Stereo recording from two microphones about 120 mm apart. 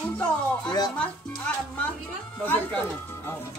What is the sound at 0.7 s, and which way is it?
Speech, 35° left (ahead or behind).